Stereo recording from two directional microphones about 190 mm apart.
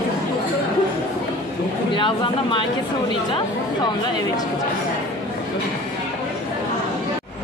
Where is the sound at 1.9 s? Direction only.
25° left (ahead or behind).